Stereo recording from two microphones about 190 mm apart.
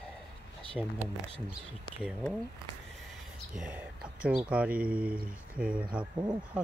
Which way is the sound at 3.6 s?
5° right (ahead or behind).